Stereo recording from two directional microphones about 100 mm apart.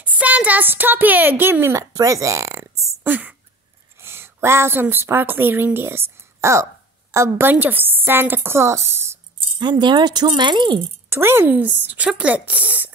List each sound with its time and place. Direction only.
0.0 s speech: 15° right (ahead or behind); by 2.6 s 30° right (ahead or behind)
2.8 s a sound: 20° right (ahead or behind)
4.0 s speech: 25° right (ahead or behind)
9.6 s speech: 50° right (ahead or behind)
11.1 s a woman's voice: 25° right (ahead or behind)